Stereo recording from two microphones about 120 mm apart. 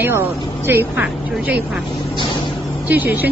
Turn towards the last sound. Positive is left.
turn(degrees=-15)  # may be behind; listen again after turning